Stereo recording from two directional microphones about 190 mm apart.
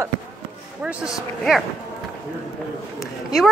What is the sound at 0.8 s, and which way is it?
Speech, centre (ahead or behind).